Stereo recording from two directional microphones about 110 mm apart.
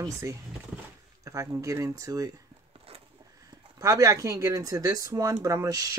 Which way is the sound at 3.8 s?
30° right (ahead or behind).